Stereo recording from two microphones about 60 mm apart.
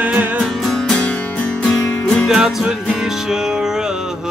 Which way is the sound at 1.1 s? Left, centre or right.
Centre.